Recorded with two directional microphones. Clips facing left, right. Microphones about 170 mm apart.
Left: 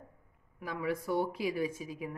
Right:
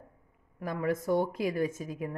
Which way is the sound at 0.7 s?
45° right (ahead or behind).